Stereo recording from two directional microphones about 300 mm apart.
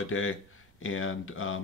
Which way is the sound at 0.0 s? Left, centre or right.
Left.